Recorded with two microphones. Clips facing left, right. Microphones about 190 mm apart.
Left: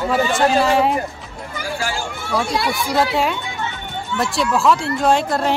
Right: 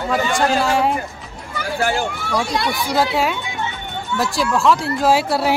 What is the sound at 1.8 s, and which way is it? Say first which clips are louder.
Speech: right 8 dB; 55° right (ahead or behind).